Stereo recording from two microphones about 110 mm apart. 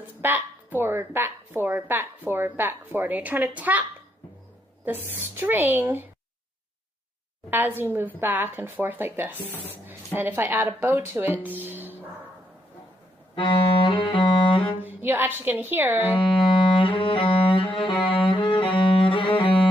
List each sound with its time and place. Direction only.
0.2 s a woman's voice: 20° right (ahead or behind)
4.8 s a woman's voice: 20° right (ahead or behind)
7.5 s a woman's voice: 20° right (ahead or behind)
13.3 s music: 50° left (ahead or behind)
14.8 s a woman's voice: 15° right (ahead or behind)
16.1 s music: 50° left (ahead or behind)